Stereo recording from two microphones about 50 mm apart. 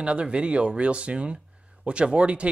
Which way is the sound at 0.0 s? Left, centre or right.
Right.